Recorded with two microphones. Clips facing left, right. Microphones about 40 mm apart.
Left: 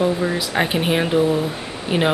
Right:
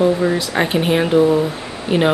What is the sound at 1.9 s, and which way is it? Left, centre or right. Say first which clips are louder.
Speech: right 4 dB; centre.